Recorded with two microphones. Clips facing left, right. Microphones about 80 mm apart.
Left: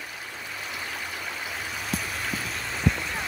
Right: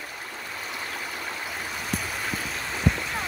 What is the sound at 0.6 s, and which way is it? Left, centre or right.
Vehicle, centre.